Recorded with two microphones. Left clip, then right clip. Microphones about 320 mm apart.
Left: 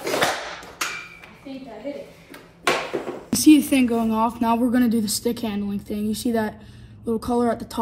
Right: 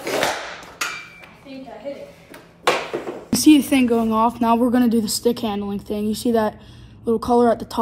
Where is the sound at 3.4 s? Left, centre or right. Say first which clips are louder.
Right 1 dB; centre.